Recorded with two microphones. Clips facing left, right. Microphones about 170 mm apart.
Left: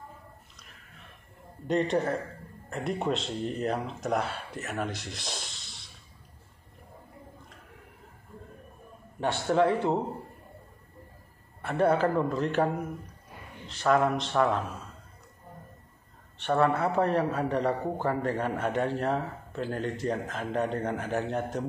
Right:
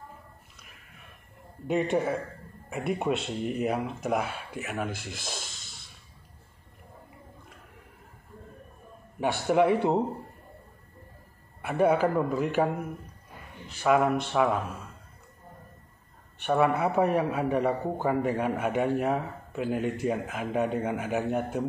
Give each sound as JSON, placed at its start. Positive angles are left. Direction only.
{"t": 1.7, "sound": "a man's voice", "side_deg": -10}
{"t": 9.2, "sound": "a man's voice", "side_deg": -15}
{"t": 11.6, "sound": "a man's voice", "side_deg": -10}
{"t": 16.3, "sound": "a man's voice", "side_deg": -10}